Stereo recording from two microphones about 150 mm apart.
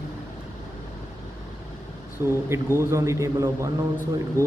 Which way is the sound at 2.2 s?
15° right (ahead or behind).